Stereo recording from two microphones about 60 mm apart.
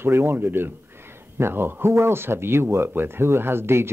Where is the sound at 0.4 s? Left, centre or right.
Right.